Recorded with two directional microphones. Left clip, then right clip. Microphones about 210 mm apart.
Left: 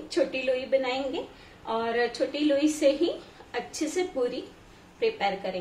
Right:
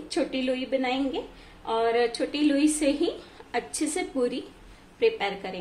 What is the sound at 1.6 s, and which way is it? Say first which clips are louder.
A woman's voice: right 3 dB; 40° right (ahead or behind).